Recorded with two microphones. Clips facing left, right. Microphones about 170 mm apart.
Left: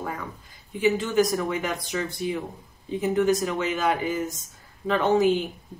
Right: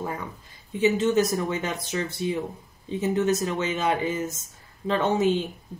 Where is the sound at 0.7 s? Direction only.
25° right (ahead or behind).